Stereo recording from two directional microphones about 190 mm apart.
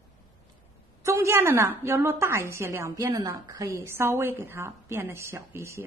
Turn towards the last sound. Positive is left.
turn(degrees=-15)  # may be behind; listen again after turning